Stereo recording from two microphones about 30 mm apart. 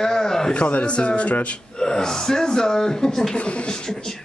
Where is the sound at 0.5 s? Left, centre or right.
Left.